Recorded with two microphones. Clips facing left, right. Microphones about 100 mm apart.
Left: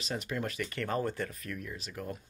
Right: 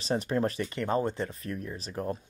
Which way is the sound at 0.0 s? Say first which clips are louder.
Right 8 dB; 35° right (ahead or behind).